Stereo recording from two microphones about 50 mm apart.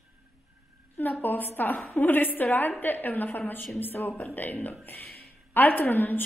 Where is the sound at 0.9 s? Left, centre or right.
Left.